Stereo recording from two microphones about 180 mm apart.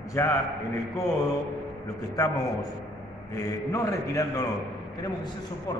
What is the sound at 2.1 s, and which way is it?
A man's voice, 20° left (ahead or behind).